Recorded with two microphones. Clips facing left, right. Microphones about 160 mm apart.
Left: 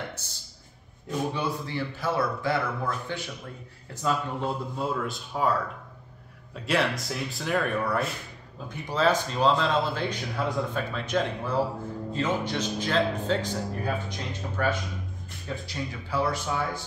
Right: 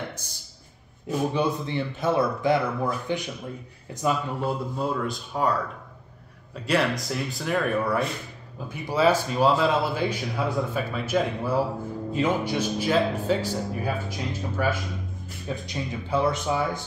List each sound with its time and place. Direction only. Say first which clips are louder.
0.2 s a man's voice: right 2 dB; 15° right (ahead or behind)
4.7 s a man's voice: right 2 dB; centre (ahead or behind)
15.4 s speech: right 2 dB; 20° right (ahead or behind)